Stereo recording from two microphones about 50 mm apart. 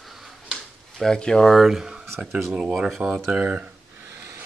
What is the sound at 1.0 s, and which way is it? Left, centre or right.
Speech, centre.